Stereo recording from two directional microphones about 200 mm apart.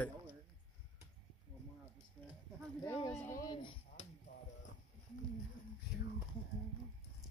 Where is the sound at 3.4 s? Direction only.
20° left (ahead or behind).